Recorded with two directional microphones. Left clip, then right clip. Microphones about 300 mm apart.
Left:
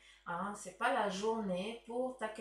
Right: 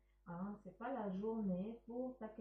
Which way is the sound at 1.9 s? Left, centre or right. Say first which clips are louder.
Left 8 dB; left.